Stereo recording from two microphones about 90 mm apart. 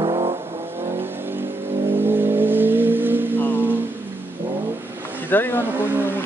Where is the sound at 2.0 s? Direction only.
25° right (ahead or behind).